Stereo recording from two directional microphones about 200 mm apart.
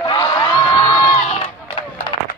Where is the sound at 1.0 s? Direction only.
30° left (ahead or behind).